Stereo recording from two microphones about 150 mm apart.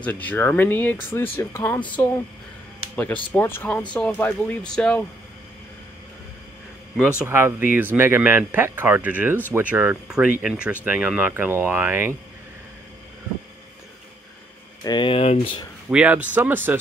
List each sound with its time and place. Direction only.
0.0 s speech: 10° left (ahead or behind)
7.0 s speech: 5° right (ahead or behind)
14.9 s speech: 35° left (ahead or behind)
15.9 s speech: 10° right (ahead or behind)